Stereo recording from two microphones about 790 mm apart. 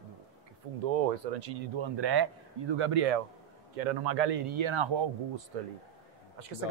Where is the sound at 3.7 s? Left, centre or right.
Right.